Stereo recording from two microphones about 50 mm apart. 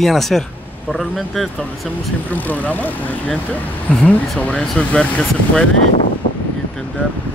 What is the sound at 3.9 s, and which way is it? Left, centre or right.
Speech, left.